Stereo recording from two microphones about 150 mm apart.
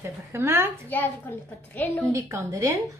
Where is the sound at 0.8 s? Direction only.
15° left (ahead or behind).